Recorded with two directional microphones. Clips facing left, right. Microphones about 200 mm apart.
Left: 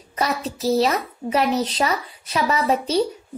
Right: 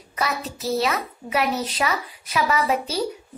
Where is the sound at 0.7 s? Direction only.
30° left (ahead or behind).